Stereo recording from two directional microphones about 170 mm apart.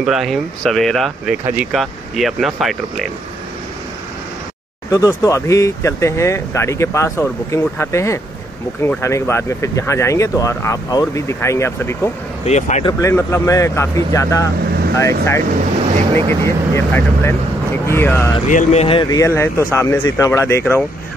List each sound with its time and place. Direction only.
0.0 s speech: centre (ahead or behind)
4.9 s speech: 20° left (ahead or behind)
12.4 s speech: 45° left (ahead or behind)
12.8 s speech: 15° left (ahead or behind)
18.5 s speech: 45° left (ahead or behind); by 20.8 s 15° left (ahead or behind)